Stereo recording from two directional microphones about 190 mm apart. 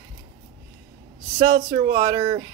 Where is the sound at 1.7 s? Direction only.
20° right (ahead or behind).